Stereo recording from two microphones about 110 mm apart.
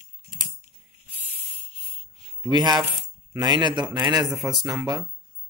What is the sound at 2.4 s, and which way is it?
A man's voice, 40° right (ahead or behind).